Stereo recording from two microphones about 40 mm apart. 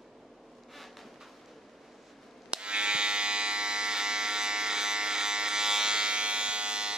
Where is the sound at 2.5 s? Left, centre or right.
Right.